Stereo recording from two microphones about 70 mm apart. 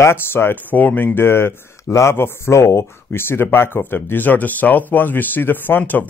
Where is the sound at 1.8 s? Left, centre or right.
Left.